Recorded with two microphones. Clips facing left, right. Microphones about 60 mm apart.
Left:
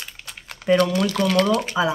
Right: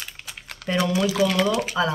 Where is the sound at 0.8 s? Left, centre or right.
Centre.